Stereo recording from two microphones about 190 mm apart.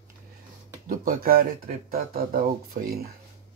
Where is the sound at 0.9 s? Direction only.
50° right (ahead or behind).